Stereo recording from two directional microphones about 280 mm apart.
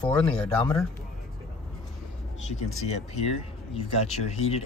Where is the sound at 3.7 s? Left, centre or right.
Left.